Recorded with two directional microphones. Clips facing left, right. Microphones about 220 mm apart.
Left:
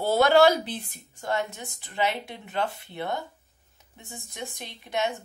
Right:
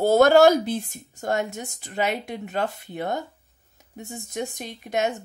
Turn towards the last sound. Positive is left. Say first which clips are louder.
# right 4 dB
turn(degrees=-45)  # may be behind; listen again after turning